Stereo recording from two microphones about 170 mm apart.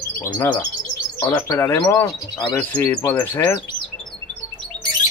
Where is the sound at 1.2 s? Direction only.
15° left (ahead or behind).